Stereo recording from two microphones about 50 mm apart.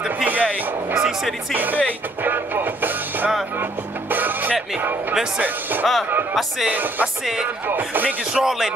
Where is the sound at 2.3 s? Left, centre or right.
Right.